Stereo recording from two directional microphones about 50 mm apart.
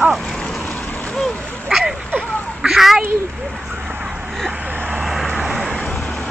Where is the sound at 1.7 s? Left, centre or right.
Centre.